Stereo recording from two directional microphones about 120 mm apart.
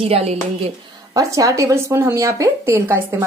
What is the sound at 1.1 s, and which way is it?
Speech, 25° right (ahead or behind).